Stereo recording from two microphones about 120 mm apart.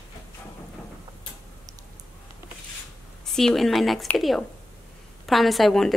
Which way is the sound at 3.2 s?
5° left (ahead or behind).